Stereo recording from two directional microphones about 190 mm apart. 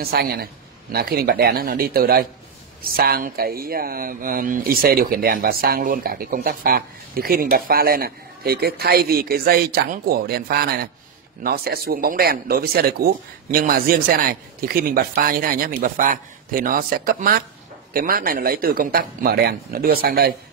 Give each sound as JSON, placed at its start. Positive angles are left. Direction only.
{"t": 0.0, "sound": "speech", "side_deg": -55}